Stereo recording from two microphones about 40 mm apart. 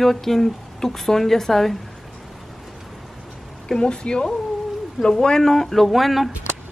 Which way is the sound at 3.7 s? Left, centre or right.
Left.